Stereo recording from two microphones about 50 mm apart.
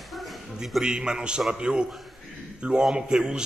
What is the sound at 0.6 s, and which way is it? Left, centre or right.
A man's voice, centre.